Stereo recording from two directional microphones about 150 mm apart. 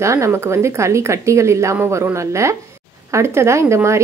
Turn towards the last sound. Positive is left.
turn(degrees=-20)  # may be behind; listen again after turning